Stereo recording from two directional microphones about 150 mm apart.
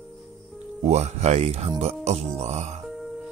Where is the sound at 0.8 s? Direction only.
45° right (ahead or behind).